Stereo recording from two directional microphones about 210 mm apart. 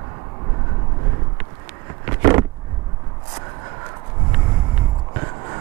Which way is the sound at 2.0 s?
15° right (ahead or behind).